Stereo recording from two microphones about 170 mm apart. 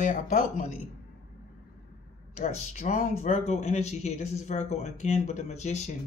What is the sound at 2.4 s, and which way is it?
Speech, 40° left (ahead or behind).